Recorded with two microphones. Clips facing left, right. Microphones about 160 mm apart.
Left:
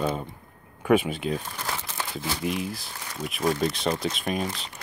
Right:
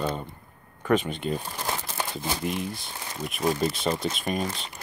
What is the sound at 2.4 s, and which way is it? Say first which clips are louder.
Speech: left 1 dB; centre (ahead or behind).